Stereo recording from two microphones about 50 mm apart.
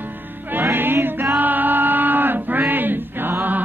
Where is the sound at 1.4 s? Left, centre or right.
Right.